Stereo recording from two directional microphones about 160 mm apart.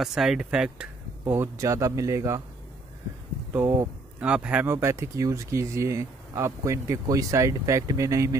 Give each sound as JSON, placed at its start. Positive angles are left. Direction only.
{"t": 0.0, "sound": "speech", "side_deg": 0}
{"t": 1.2, "sound": "speech", "side_deg": -15}
{"t": 3.5, "sound": "speech", "side_deg": -15}